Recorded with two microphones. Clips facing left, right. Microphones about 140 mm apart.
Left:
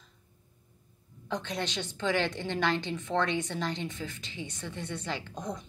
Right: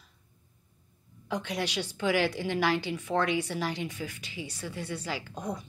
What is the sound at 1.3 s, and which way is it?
A woman's voice, 10° right (ahead or behind).